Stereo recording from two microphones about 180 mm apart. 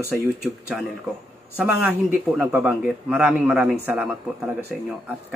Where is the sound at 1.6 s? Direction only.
10° right (ahead or behind).